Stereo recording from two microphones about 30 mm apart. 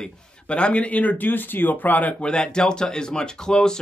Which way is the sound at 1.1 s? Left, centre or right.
Left.